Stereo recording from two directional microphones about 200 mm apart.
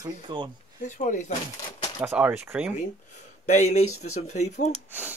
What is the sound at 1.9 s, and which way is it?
Speech, 10° right (ahead or behind).